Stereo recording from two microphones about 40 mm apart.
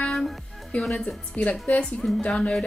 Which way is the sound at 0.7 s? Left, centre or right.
Left.